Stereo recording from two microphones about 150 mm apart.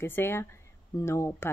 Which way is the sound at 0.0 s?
15° left (ahead or behind).